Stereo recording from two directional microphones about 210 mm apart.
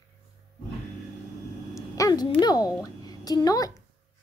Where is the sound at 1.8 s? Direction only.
15° left (ahead or behind).